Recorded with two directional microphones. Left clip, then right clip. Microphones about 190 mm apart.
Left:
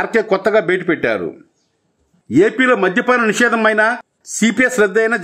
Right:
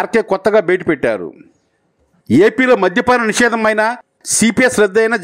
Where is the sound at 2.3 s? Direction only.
35° right (ahead or behind).